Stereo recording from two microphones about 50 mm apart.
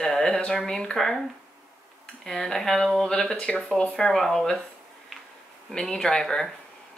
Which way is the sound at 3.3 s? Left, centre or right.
Left.